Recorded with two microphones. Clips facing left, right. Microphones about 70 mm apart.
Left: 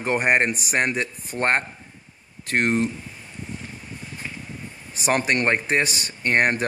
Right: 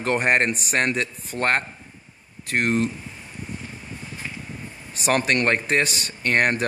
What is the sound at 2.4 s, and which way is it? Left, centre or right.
Speech, left.